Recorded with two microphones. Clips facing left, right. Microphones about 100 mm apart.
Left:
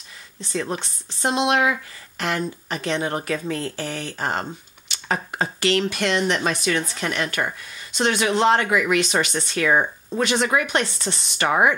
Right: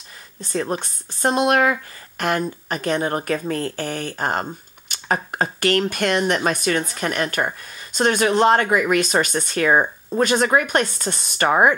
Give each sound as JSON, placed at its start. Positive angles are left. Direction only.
{"t": 0.4, "sound": "speech", "side_deg": -45}